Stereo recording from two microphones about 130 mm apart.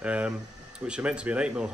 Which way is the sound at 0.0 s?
10° right (ahead or behind).